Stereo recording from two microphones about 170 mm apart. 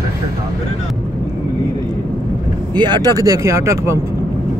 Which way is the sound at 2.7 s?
25° right (ahead or behind).